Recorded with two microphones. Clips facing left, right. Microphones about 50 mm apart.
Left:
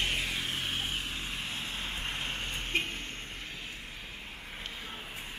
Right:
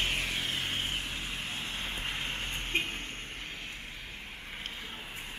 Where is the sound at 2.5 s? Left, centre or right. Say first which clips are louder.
Even; centre.